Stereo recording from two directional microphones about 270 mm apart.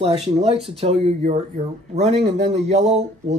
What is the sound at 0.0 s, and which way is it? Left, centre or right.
Speech, right.